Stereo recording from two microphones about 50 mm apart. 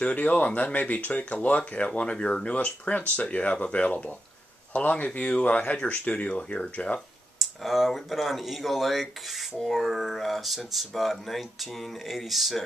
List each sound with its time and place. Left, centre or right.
0.0 s speech: left
1.9 s speech: centre
7.3 s speech: centre